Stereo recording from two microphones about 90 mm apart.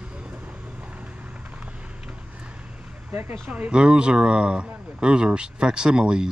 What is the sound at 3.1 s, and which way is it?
Speech, 20° right (ahead or behind).